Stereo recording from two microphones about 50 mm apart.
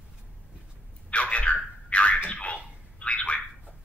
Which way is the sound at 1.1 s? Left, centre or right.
Left.